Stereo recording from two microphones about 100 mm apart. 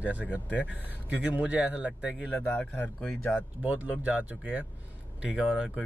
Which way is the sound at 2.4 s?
15° left (ahead or behind).